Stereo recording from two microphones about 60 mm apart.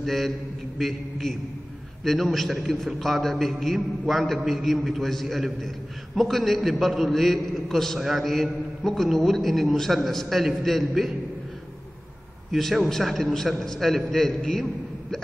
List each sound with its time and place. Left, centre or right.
0.0 s a man's voice: centre
12.5 s a man's voice: centre